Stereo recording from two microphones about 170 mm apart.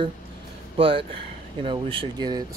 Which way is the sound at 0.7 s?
30° right (ahead or behind).